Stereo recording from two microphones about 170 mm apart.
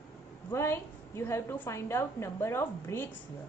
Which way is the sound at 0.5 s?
15° left (ahead or behind).